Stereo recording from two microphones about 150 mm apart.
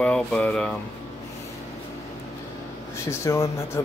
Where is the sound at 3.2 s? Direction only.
20° left (ahead or behind).